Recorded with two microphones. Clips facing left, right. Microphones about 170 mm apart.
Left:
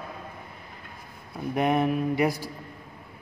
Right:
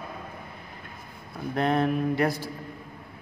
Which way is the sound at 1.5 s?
15° left (ahead or behind).